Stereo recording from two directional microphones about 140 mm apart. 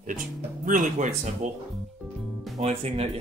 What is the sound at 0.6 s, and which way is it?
Speech, 65° right (ahead or behind).